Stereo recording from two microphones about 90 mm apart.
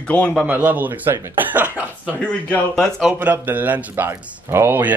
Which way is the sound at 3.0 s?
10° right (ahead or behind).